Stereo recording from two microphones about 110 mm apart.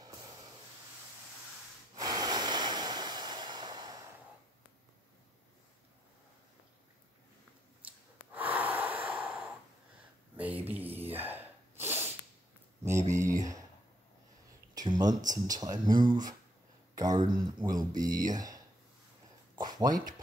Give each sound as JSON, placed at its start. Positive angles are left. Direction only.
{"t": 2.0, "sound": "waves", "side_deg": -35}
{"t": 8.3, "sound": "breathing", "side_deg": -15}
{"t": 10.3, "sound": "a sound", "side_deg": -15}
{"t": 11.1, "sound": "sneeze", "side_deg": -20}
{"t": 13.1, "sound": "speech", "side_deg": -30}
{"t": 14.8, "sound": "speech", "side_deg": -40}
{"t": 19.5, "sound": "a sound", "side_deg": -40}